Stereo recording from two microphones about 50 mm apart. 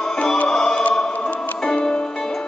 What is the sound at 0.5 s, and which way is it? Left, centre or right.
Music, centre.